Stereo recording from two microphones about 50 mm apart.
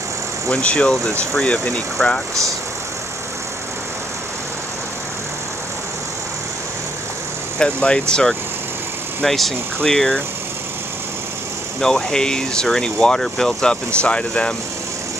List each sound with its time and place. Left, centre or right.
0.5 s speech: left
7.5 s speech: centre
11.8 s speech: centre
14.0 s speech: left